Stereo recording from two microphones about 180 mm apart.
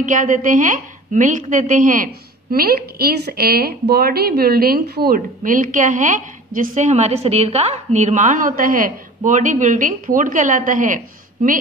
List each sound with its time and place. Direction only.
0.0 s a woman's voice: 45° right (ahead or behind)